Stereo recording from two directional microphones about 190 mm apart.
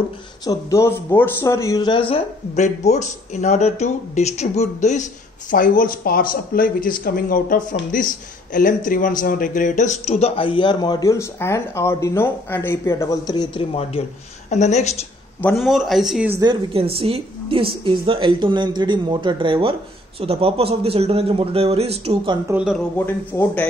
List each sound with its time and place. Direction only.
0.5 s speech: 15° left (ahead or behind); by 15.0 s 35° left (ahead or behind)
15.4 s speech: centre (ahead or behind)
16.3 s a woman's voice: 25° right (ahead or behind)
22.5 s speech: 5° right (ahead or behind)
22.9 s speech: 10° left (ahead or behind)